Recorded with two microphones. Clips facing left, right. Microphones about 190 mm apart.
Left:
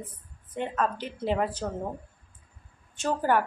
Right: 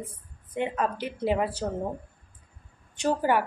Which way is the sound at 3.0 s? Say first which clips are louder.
Right 1 dB; 10° right (ahead or behind).